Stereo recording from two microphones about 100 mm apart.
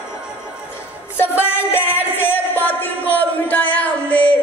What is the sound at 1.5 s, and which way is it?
Music, 20° left (ahead or behind).